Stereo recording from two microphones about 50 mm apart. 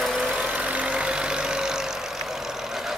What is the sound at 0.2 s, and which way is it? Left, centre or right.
Vehicle, right.